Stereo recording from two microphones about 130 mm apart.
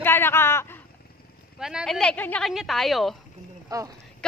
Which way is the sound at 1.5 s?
5° right (ahead or behind).